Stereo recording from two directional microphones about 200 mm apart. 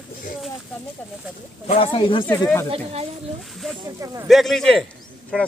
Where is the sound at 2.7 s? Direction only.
30° right (ahead or behind).